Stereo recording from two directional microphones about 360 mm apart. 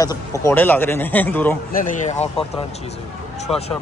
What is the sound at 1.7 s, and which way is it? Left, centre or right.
Speech, left.